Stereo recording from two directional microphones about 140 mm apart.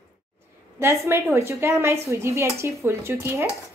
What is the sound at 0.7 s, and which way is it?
A woman's voice, 20° right (ahead or behind).